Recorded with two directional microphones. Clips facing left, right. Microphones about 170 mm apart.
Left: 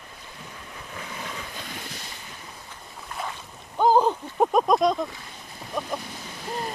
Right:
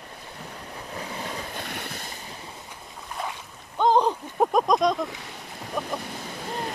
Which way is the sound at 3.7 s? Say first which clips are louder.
Left 1 dB; 5° left (ahead or behind).